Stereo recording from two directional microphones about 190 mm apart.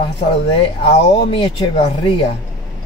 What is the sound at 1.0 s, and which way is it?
Speech, 35° left (ahead or behind).